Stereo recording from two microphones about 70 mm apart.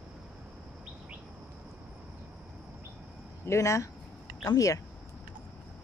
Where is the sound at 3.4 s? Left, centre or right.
Left.